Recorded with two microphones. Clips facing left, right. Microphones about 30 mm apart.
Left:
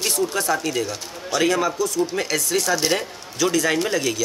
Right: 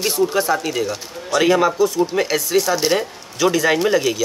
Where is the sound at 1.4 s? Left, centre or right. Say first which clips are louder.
Right 5 dB; centre.